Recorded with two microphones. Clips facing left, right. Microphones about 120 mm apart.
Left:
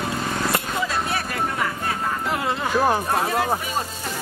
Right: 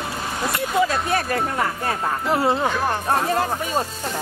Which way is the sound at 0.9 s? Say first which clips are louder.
Right 4 dB; 45° right (ahead or behind).